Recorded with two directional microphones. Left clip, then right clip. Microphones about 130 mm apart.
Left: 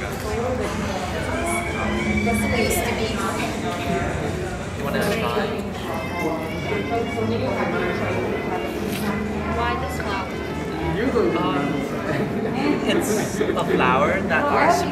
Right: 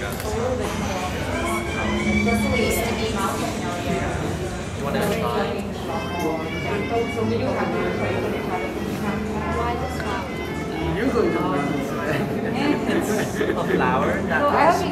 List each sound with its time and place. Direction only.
13.7 s speech: 25° left (ahead or behind)